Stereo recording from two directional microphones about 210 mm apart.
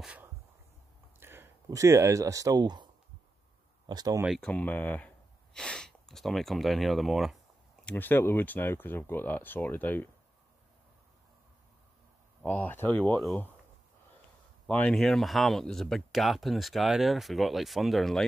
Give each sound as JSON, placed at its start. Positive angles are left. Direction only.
{"t": 0.0, "sound": "a sound", "side_deg": -5}
{"t": 1.2, "sound": "speech", "side_deg": -10}
{"t": 3.9, "sound": "speech", "side_deg": -20}
{"t": 4.2, "sound": "speech", "side_deg": 0}
{"t": 12.4, "sound": "speech", "side_deg": 10}
{"t": 14.7, "sound": "speech", "side_deg": 5}